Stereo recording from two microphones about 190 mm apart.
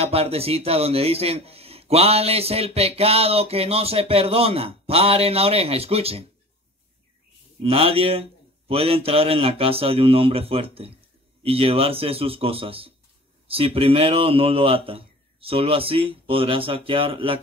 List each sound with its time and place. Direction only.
0.0 s speech: 30° right (ahead or behind)
7.6 s a man's voice: 30° right (ahead or behind)